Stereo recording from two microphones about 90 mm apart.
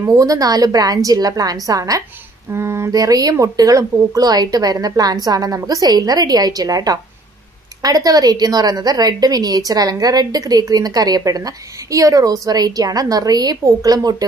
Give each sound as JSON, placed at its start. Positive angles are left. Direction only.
{"t": 0.0, "sound": "a woman's voice", "side_deg": -40}
{"t": 2.5, "sound": "a sound", "side_deg": -30}
{"t": 2.9, "sound": "a woman's voice", "side_deg": -45}